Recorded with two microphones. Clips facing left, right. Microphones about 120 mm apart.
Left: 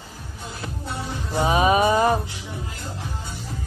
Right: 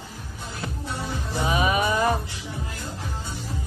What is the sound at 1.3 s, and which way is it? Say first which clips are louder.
Music: left 5 dB; 30° left (ahead or behind).